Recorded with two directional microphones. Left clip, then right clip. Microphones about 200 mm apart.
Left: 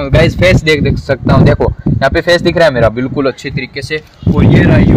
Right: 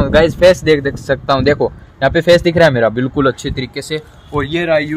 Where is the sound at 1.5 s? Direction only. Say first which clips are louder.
Left 3 dB; 15° left (ahead or behind).